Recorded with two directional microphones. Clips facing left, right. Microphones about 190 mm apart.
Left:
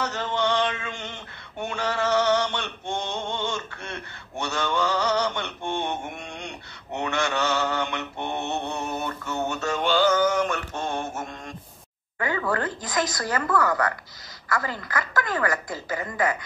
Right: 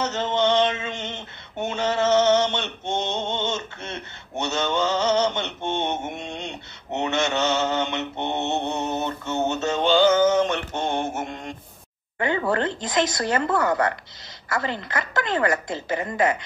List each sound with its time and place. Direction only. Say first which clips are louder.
0.0 s mantra: right 4 dB; 25° right (ahead or behind)
12.2 s a woman's voice: right 3 dB; 25° right (ahead or behind)